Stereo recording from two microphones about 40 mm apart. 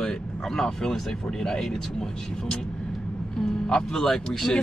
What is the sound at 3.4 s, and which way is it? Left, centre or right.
Vehicle, centre.